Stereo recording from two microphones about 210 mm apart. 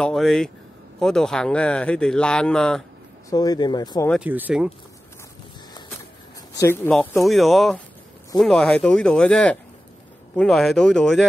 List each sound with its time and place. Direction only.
0.0 s speech: centre (ahead or behind)
3.3 s speech: 20° left (ahead or behind)
4.1 s speech: 5° right (ahead or behind)
6.5 s speech: 15° left (ahead or behind)